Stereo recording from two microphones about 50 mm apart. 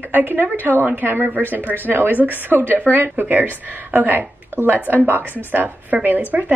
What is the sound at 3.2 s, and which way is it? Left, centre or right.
A woman's voice, right.